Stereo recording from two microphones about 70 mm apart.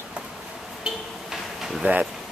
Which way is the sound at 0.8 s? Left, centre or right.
Centre.